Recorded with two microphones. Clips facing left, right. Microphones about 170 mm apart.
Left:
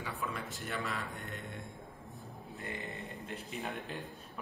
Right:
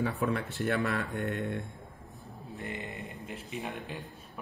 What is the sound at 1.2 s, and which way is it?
Mantra, 65° right (ahead or behind).